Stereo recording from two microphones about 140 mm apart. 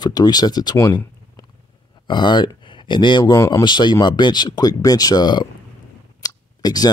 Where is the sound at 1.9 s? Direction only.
35° left (ahead or behind).